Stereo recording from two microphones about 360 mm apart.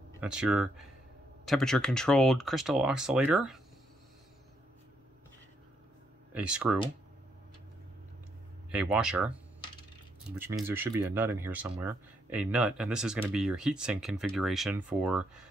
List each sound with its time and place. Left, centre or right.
0.2 s speech: centre
6.3 s speech: centre
8.7 s speech: centre
10.4 s speech: centre